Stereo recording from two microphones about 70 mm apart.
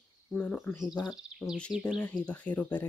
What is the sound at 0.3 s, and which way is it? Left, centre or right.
Speech, centre.